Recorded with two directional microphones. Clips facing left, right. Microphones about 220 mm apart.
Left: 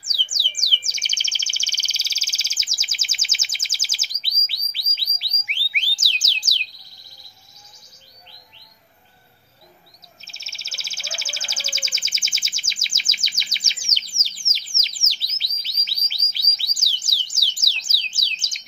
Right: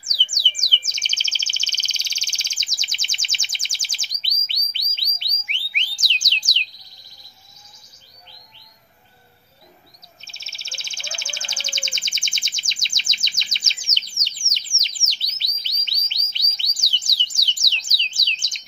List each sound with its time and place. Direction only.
0.3 s bird: 5° left (ahead or behind)
5.7 s a sound: 5° left (ahead or behind)
10.2 s bird: centre (ahead or behind)
14.4 s bird: 70° left (ahead or behind)
14.8 s chirp: centre (ahead or behind)